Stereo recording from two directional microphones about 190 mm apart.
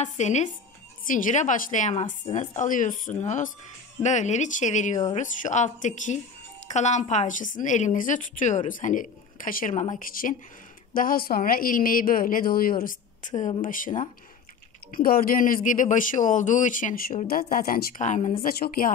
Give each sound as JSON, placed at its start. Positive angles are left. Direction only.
{"t": 0.0, "sound": "a woman's voice", "side_deg": 40}